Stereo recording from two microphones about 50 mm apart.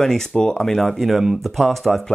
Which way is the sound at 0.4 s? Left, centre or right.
Centre.